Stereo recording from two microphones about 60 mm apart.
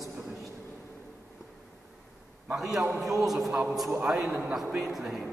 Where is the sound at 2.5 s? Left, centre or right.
Centre.